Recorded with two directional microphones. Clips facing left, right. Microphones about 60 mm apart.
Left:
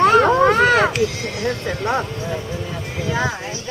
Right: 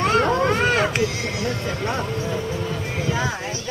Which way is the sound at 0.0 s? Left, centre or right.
Left.